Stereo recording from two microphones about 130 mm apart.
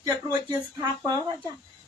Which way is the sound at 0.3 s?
30° right (ahead or behind).